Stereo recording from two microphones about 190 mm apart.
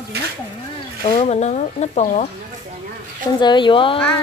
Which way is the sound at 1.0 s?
30° left (ahead or behind).